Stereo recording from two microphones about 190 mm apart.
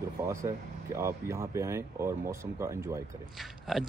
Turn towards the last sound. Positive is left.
turn(degrees=0)  # may be behind; listen again after turning